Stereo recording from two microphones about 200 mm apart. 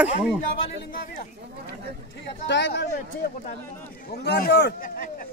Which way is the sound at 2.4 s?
60° left (ahead or behind).